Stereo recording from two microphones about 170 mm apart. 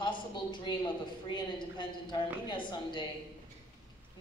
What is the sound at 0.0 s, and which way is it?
A woman's voice, 30° left (ahead or behind).